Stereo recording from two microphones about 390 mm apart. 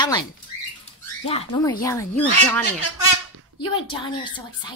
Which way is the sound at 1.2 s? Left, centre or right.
Centre.